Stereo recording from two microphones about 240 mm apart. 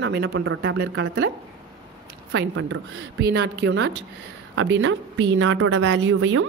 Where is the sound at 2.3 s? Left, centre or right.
Right.